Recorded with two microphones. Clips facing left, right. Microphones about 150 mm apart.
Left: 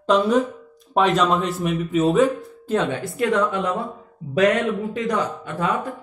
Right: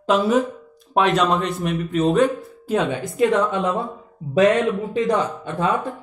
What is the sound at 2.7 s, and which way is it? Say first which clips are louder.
Speech: right 1 dB; 15° right (ahead or behind).